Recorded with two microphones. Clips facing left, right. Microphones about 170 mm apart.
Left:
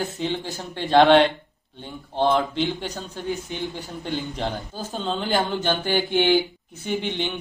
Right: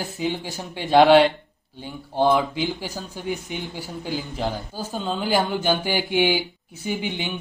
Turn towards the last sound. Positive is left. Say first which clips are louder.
# left 1 dB
turn(degrees=-5)  # may be behind; listen again after turning